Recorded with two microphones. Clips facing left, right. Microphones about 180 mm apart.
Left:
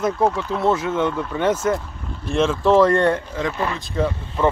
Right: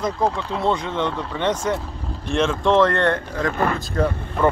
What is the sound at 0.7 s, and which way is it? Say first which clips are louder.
Speech: left 3 dB; 5° left (ahead or behind).